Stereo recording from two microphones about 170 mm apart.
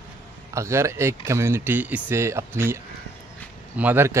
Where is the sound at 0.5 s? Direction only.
15° right (ahead or behind).